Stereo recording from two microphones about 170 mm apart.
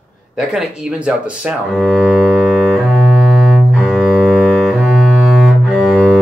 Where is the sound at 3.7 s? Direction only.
Centre (ahead or behind).